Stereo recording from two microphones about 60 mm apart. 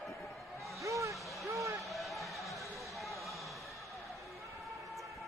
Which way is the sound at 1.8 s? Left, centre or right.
Centre.